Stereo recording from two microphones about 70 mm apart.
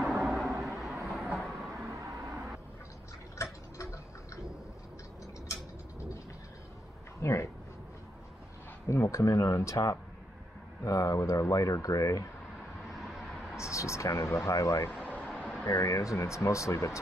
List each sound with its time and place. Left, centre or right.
0.0 s a sound: centre
1.0 s vehicle: centre
1.8 s a sound: right
3.7 s tick-tock: left
7.2 s speech: left
8.8 s speech: left
12.9 s vehicle: centre
13.6 s speech: left
15.2 s vehicle: centre
15.7 s speech: left